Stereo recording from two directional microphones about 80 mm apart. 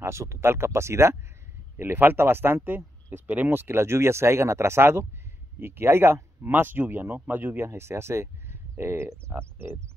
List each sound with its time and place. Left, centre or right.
0.0 s speech: right